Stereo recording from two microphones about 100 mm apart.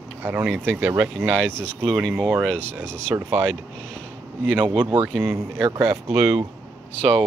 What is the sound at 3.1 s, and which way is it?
Speech, 25° right (ahead or behind).